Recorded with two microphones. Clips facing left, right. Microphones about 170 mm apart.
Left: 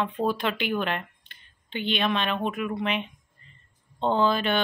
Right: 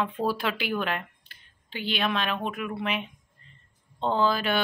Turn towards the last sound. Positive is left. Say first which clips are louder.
# left 2 dB
turn(degrees=0)  # may be behind; listen again after turning